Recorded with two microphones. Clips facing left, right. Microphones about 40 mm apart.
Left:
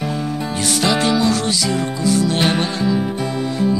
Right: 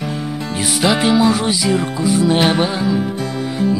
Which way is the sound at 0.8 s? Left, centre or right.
Centre.